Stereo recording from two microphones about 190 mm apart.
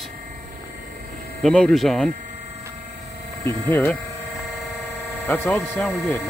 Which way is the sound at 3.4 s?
10° left (ahead or behind).